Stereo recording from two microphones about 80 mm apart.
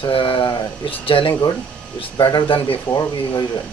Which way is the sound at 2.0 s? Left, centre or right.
Left.